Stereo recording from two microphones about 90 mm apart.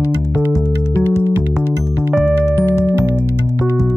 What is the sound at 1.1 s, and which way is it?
Music, 35° right (ahead or behind).